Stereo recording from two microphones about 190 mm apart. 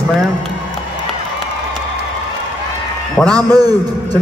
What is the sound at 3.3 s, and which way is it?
Speech, 20° right (ahead or behind).